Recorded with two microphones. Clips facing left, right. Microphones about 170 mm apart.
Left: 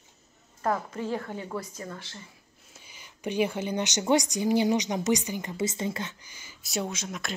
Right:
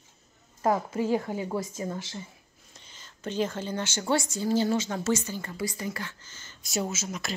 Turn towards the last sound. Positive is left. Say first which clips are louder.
# right 1 dB
turn(degrees=0)  # may be behind; listen again after turning